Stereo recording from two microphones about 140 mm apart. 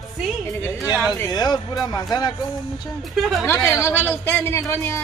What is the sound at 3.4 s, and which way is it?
A man's voice, 20° left (ahead or behind).